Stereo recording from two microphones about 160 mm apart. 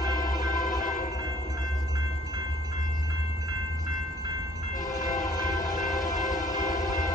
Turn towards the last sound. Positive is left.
turn(degrees=50)  # may be behind; listen again after turning